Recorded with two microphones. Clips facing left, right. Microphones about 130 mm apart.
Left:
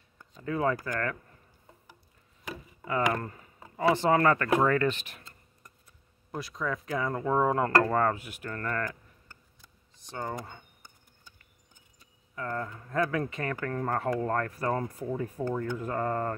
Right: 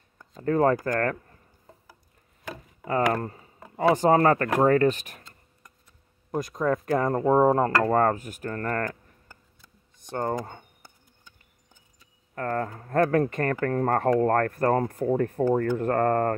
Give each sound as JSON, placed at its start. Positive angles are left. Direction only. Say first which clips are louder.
{"t": 0.3, "sound": "speech", "louder": "right 7 dB", "side_deg": -45}
{"t": 2.9, "sound": "speech", "louder": "right 4 dB", "side_deg": -40}
{"t": 6.3, "sound": "speech", "louder": "right 8 dB", "side_deg": -45}
{"t": 9.9, "sound": "a sound", "louder": "right 7 dB", "side_deg": -50}
{"t": 10.3, "sound": "speech", "louder": "right 8 dB", "side_deg": -40}
{"t": 12.4, "sound": "speech", "louder": "right 6 dB", "side_deg": -50}